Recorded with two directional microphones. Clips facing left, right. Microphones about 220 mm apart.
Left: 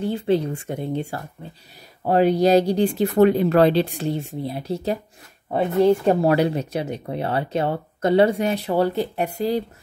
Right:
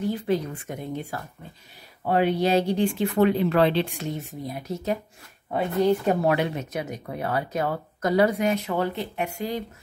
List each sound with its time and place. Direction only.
0.0 s speech: 30° left (ahead or behind)
2.0 s speech: 40° left (ahead or behind)
6.0 s speech: 35° left (ahead or behind)